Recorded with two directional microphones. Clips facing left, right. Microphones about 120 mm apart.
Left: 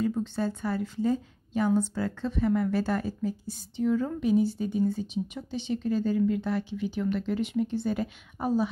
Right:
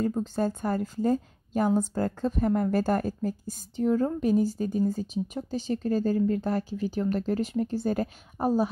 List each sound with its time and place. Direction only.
0.2 s a woman's voice: 45° right (ahead or behind)